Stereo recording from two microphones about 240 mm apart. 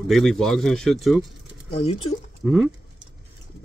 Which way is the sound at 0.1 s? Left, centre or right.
Centre.